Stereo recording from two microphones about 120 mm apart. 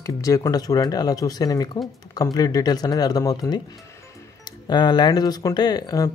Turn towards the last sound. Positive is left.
turn(degrees=30)  # may be behind; listen again after turning